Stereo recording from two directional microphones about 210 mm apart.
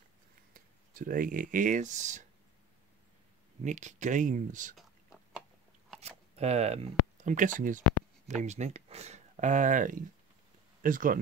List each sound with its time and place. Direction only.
0.5 s speech: 45° right (ahead or behind)
3.6 s speech: 35° right (ahead or behind)
5.9 s speech: 30° right (ahead or behind)